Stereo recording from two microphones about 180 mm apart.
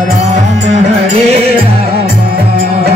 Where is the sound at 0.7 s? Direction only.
40° right (ahead or behind).